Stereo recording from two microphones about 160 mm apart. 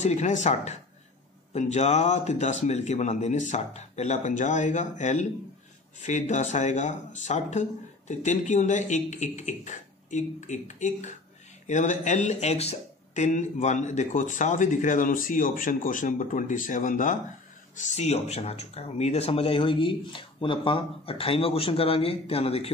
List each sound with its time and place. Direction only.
0.0 s speech: 45° left (ahead or behind)